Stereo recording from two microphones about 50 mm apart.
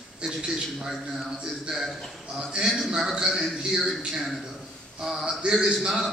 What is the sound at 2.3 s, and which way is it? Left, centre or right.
A man's voice, centre.